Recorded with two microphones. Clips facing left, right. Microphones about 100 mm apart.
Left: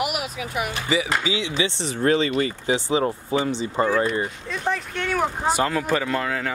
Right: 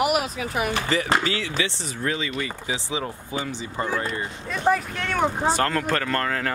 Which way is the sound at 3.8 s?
25° left (ahead or behind).